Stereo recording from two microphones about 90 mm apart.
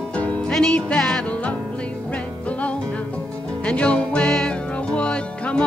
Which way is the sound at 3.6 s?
15° left (ahead or behind).